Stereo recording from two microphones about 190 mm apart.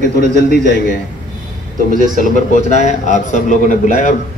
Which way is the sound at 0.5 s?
60° left (ahead or behind).